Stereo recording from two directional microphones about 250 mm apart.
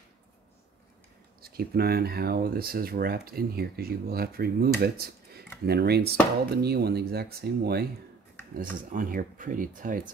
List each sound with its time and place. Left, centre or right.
1.4 s speech: right